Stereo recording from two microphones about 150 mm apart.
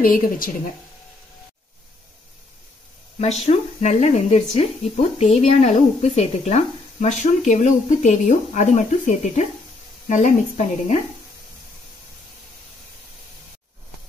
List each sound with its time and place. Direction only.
0.0 s a woman's voice: 70° left (ahead or behind)
3.2 s a woman's voice: 45° left (ahead or behind)